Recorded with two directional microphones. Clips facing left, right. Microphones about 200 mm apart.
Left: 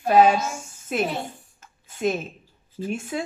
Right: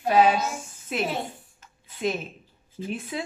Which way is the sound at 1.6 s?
45° left (ahead or behind).